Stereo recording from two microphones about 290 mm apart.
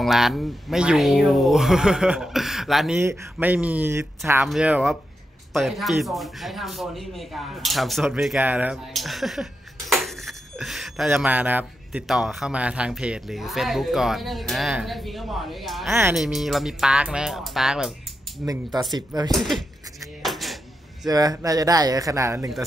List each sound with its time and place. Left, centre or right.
0.0 s speech: centre
18.4 s speech: centre
19.3 s speech: centre
20.2 s a sound: centre
21.1 s speech: centre